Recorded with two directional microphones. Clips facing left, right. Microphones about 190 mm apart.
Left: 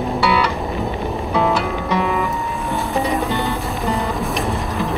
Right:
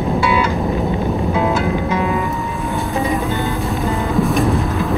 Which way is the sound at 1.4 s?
15° right (ahead or behind).